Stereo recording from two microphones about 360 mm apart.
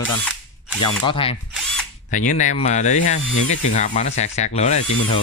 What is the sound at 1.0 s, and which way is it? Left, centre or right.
Speech, centre.